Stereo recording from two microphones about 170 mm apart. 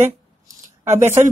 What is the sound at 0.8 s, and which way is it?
Speech, 45° right (ahead or behind).